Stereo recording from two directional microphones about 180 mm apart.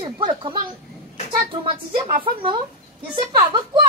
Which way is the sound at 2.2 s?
30° right (ahead or behind).